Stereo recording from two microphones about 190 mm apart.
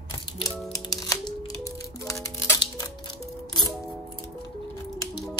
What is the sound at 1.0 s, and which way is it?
Music, 15° left (ahead or behind).